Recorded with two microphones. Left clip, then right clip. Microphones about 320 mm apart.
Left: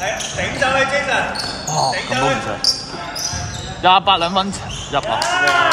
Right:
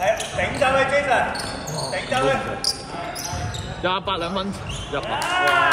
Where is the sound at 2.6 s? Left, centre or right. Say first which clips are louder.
Left 10 dB; centre.